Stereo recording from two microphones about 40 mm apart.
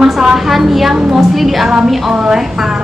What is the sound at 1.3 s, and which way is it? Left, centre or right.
A woman's voice, centre.